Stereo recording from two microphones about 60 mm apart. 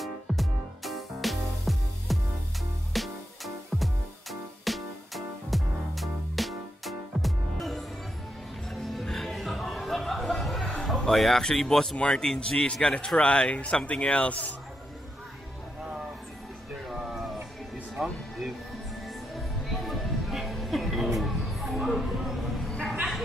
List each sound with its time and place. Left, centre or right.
0.0 s music: centre
12.8 s speech: centre
16.9 s music: centre
19.7 s music: centre